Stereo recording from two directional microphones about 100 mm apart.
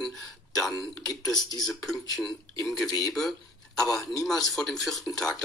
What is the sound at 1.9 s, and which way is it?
Speech, centre (ahead or behind).